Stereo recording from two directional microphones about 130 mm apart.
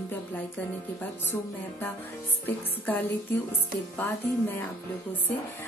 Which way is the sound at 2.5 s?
15° left (ahead or behind).